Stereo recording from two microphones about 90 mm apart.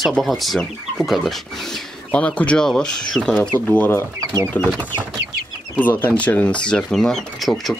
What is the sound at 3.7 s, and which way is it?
Speech, 20° left (ahead or behind).